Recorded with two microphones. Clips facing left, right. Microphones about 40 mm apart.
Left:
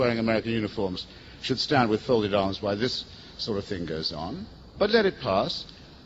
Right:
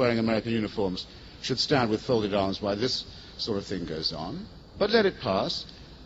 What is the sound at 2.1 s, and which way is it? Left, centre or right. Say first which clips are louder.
Speech: left 2 dB; left.